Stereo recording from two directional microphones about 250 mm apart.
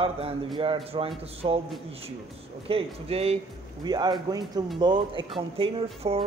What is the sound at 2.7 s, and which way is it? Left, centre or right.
A man's voice, right.